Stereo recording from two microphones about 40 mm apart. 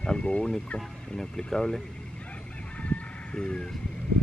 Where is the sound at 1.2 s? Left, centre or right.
Centre.